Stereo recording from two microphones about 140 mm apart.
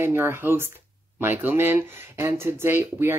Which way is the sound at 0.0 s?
15° right (ahead or behind).